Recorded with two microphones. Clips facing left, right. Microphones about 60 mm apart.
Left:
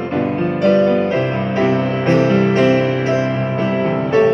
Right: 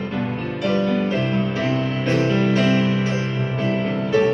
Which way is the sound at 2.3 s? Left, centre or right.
Left.